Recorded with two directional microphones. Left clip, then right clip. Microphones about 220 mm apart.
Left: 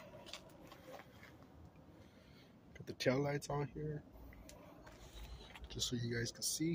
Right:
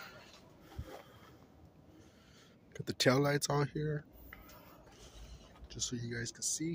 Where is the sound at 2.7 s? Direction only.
35° right (ahead or behind).